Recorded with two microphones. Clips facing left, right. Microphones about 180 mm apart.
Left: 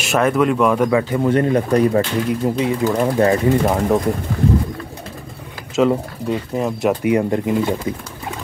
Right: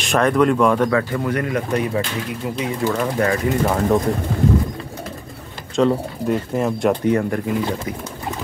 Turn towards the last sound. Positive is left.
turn(degrees=20)  # may be behind; listen again after turning